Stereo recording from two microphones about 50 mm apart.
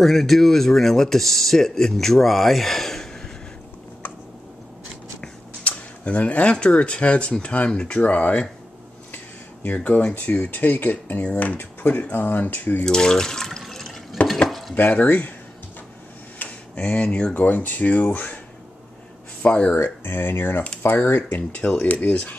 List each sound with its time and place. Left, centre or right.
0.0 s speech: centre
5.6 s speech: left
12.8 s water: centre
14.2 s stir: left
14.8 s speech: left
16.3 s tick-tock: left
17.3 s speech: left
19.4 s speech: left
19.7 s speech: left
21.5 s speech: centre
21.8 s speech: left